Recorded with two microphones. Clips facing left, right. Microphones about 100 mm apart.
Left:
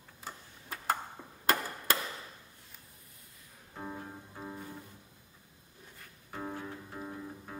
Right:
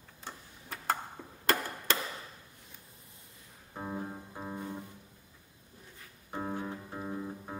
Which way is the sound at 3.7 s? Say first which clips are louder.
Right 4 dB; 20° right (ahead or behind).